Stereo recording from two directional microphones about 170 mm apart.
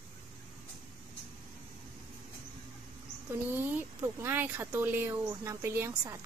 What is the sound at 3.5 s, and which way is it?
Speech, 10° right (ahead or behind).